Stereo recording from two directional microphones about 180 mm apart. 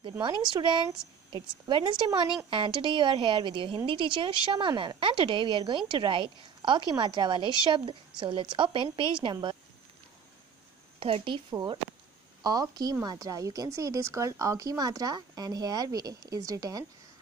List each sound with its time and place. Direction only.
0.5 s a woman's voice: 25° right (ahead or behind)
11.0 s a woman's voice: 30° right (ahead or behind)